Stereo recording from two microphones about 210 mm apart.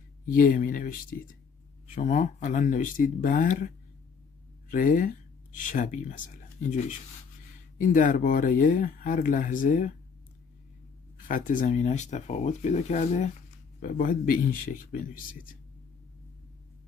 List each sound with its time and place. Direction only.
0.3 s speech: 40° left (ahead or behind)
11.2 s speech: 40° left (ahead or behind)